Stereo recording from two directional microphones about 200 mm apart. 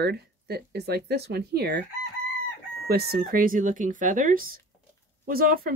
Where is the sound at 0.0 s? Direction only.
50° right (ahead or behind).